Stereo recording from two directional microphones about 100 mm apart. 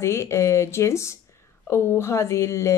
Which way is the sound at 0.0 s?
30° left (ahead or behind).